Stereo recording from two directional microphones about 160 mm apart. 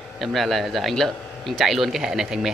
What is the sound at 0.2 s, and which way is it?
Speech, centre (ahead or behind).